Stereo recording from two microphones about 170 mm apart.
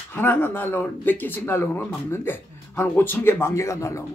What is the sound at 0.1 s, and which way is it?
Speech, 10° left (ahead or behind).